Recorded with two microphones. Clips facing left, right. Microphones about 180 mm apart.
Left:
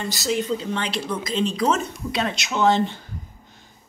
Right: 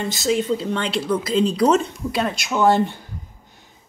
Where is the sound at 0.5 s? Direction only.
30° right (ahead or behind).